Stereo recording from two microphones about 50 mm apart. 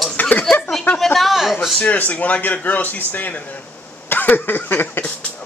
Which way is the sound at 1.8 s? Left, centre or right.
Left.